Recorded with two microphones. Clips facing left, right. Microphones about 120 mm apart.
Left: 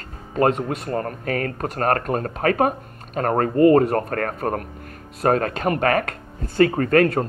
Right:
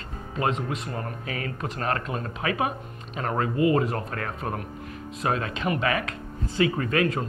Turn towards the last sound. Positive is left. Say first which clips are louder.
# left 7 dB
turn(degrees=50)  # may be behind; listen again after turning